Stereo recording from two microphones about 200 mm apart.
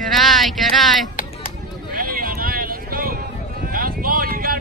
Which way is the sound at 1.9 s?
45° right (ahead or behind).